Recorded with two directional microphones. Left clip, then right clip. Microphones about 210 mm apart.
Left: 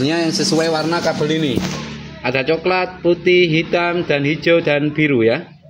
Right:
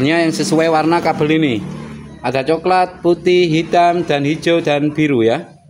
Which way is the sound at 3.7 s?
20° right (ahead or behind).